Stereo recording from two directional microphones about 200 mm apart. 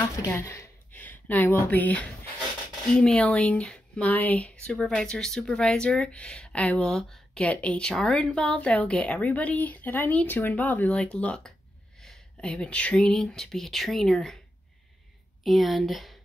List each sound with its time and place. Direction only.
0.0 s speech: 15° left (ahead or behind)
15.4 s speech: centre (ahead or behind)